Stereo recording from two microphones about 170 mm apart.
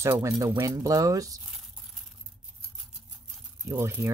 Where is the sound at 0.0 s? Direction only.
15° right (ahead or behind).